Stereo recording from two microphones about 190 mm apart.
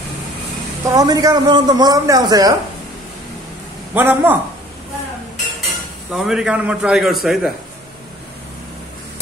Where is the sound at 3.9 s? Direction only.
10° right (ahead or behind).